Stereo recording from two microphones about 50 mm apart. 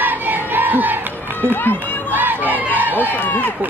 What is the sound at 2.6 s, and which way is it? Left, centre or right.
Chicken, right.